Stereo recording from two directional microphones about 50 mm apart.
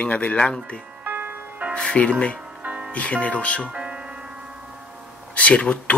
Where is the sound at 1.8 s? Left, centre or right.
Left.